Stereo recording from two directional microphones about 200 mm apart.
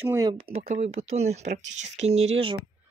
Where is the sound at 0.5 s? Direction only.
30° right (ahead or behind).